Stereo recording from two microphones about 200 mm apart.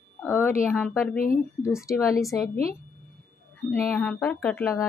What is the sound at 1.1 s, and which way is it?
Speech, 45° left (ahead or behind).